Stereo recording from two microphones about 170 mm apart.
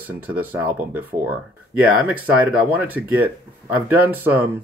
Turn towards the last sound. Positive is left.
turn(degrees=-10)  # may be behind; listen again after turning